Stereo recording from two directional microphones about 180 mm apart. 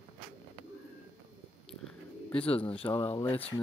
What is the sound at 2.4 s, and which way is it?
Speech, 30° left (ahead or behind).